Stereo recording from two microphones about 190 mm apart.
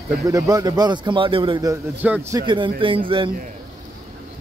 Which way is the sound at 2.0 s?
10° right (ahead or behind).